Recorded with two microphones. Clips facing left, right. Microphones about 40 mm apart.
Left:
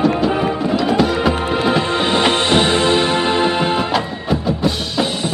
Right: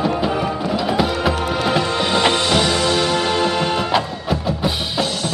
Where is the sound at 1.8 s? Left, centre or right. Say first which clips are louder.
Left 1 dB; left.